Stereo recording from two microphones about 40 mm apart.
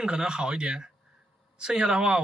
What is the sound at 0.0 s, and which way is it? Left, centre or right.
Speech, right.